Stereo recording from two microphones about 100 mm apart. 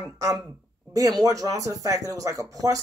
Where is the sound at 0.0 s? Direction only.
35° right (ahead or behind).